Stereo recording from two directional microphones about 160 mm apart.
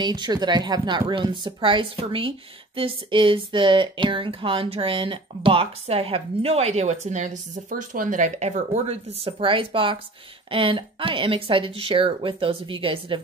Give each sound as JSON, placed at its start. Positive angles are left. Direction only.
{"t": 0.0, "sound": "speech", "side_deg": -25}